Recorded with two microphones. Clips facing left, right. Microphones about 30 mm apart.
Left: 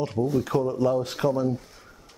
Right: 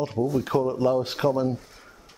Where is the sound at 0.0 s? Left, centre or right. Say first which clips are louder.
Even; centre.